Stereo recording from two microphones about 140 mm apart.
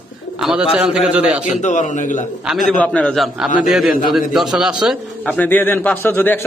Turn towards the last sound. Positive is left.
turn(degrees=15)  # may be behind; listen again after turning